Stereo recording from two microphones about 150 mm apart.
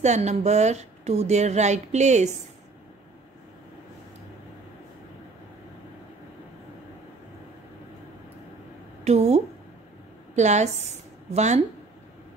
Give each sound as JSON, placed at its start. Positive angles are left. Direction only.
{"t": 0.0, "sound": "speech", "side_deg": -50}
{"t": 9.0, "sound": "a woman's voice", "side_deg": -45}